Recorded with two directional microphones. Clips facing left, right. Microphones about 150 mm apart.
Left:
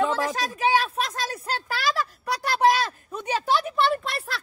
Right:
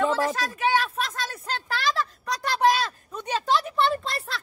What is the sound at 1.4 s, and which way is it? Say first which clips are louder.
Speech: right 1 dB; 5° left (ahead or behind).